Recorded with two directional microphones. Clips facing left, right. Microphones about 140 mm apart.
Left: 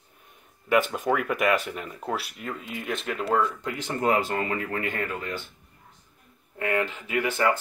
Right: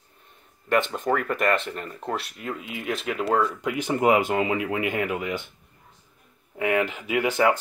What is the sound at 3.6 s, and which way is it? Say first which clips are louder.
Speech: right 5 dB; 15° right (ahead or behind).